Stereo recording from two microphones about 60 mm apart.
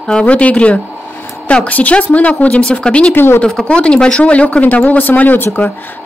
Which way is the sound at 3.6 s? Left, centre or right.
Centre.